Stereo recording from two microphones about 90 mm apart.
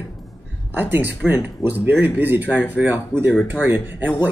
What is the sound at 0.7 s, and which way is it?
Speech, 20° right (ahead or behind).